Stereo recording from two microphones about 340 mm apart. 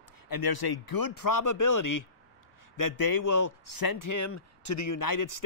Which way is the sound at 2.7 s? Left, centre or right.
Left.